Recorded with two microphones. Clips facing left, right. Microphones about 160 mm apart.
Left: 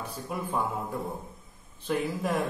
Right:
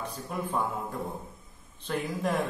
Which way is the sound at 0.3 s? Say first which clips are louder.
Even; 5° left (ahead or behind).